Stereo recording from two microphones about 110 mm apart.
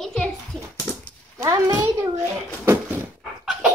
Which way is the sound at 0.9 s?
25° left (ahead or behind).